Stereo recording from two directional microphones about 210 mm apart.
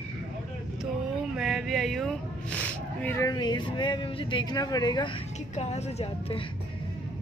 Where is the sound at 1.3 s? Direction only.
Centre (ahead or behind); by 5.1 s 20° left (ahead or behind).